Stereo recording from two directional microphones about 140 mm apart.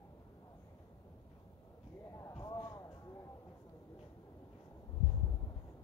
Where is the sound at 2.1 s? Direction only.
20° left (ahead or behind).